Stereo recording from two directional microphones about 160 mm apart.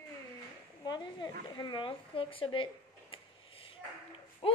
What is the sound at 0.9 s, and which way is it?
Speech, 25° left (ahead or behind).